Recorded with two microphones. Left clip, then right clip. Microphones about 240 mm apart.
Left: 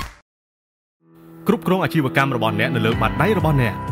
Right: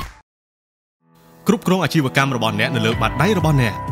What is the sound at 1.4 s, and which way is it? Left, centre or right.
Speech, centre.